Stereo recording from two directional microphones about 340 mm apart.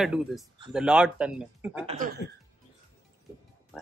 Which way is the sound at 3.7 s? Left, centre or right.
Centre.